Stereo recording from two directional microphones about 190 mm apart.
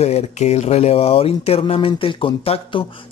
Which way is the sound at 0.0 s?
35° left (ahead or behind).